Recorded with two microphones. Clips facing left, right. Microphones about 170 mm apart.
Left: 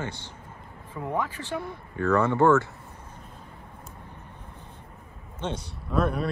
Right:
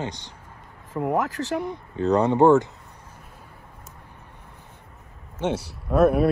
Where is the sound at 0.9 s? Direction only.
90° right.